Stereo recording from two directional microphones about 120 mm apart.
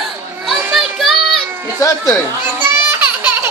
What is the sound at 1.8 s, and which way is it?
Speech, 30° left (ahead or behind).